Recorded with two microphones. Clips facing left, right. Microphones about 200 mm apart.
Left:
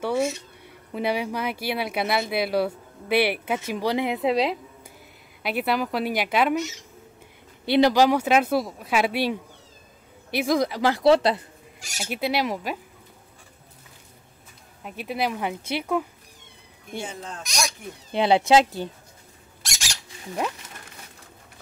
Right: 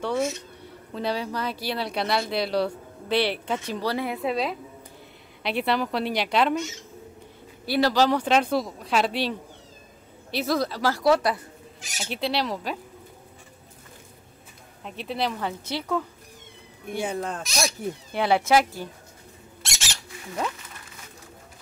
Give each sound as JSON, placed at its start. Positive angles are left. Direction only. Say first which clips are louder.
{"t": 0.0, "sound": "speech", "louder": "left 2 dB", "side_deg": 10}
{"t": 5.4, "sound": "a woman's voice", "louder": "even", "side_deg": 5}
{"t": 7.6, "sound": "speech", "louder": "left 3 dB", "side_deg": 20}
{"t": 12.0, "sound": "speech", "louder": "left 2 dB", "side_deg": 10}
{"t": 14.8, "sound": "speech", "louder": "left 1 dB", "side_deg": 10}
{"t": 17.0, "sound": "speech", "louder": "right 9 dB", "side_deg": -60}
{"t": 18.1, "sound": "speech", "louder": "left 3 dB", "side_deg": 20}
{"t": 19.6, "sound": "a sound", "louder": "even", "side_deg": 0}